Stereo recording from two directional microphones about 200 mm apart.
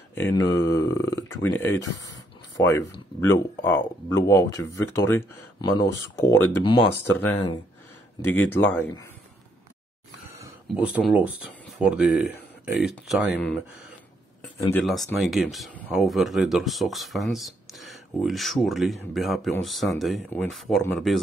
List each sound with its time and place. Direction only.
0.1 s speech: 15° left (ahead or behind)
7.2 s speech: 10° left (ahead or behind)
10.8 s speech: 5° right (ahead or behind)
15.1 s speech: centre (ahead or behind)